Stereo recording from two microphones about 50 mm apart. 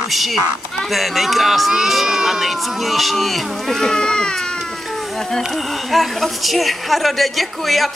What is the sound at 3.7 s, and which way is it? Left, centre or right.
Speech, centre.